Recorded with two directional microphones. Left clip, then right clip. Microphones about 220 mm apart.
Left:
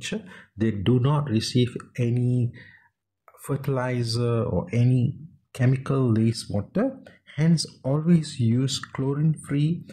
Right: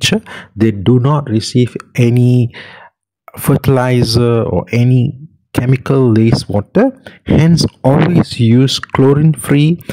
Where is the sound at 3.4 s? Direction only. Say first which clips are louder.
Right 15 dB; 45° right (ahead or behind).